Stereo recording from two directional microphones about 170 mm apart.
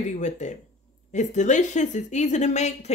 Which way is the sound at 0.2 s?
45° left (ahead or behind).